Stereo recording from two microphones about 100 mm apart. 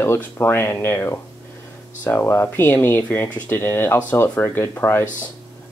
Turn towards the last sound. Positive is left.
turn(degrees=25)  # may be behind; listen again after turning